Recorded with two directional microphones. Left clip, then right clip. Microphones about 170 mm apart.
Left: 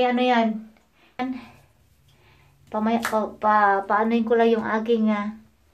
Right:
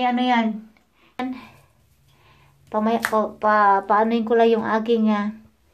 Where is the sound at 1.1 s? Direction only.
10° right (ahead or behind).